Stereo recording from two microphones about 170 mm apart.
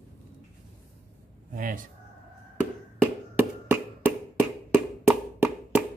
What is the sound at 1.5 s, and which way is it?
Speech, 55° right (ahead or behind).